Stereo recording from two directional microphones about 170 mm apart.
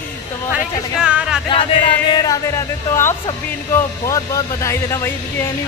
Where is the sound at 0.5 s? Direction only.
5° right (ahead or behind).